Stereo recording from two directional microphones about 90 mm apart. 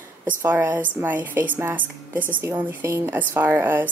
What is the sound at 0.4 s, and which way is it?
A woman's voice, 25° right (ahead or behind).